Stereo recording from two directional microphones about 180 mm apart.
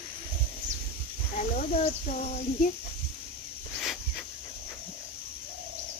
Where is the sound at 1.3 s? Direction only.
40° left (ahead or behind).